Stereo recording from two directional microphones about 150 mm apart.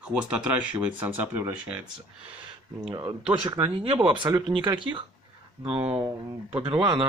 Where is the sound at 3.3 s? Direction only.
35° right (ahead or behind).